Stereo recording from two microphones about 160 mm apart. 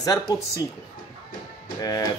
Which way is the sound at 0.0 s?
25° left (ahead or behind).